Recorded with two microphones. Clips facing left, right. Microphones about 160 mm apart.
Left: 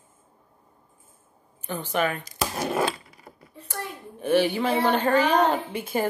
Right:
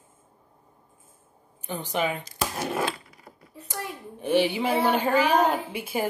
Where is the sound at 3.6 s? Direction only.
10° right (ahead or behind).